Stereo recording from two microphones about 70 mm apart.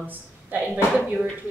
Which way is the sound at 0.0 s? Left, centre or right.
Right.